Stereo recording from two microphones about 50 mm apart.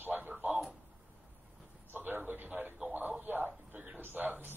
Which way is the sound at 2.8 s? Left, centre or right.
Right.